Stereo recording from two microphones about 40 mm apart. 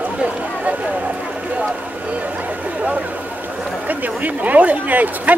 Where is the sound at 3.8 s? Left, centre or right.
Right.